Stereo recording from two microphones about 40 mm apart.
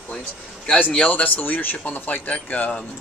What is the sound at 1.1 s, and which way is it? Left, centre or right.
Speech, left.